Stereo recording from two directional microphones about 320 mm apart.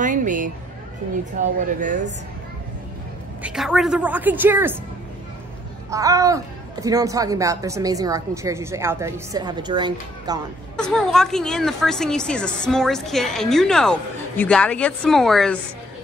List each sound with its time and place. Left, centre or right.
0.0 s a sound: right
1.4 s speech: right
3.4 s a woman's voice: centre
5.9 s speech: centre
10.8 s a woman's voice: centre